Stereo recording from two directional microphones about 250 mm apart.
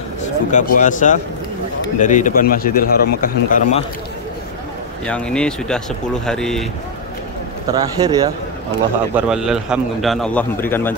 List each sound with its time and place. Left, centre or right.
0.5 s a man's voice: left
5.0 s a man's voice: centre
7.7 s speech: centre
9.1 s a man's voice: centre